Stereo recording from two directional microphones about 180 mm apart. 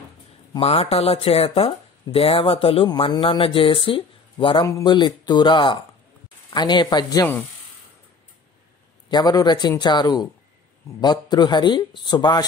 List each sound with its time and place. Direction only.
0.6 s speech: 35° left (ahead or behind)
9.1 s speech: 20° left (ahead or behind)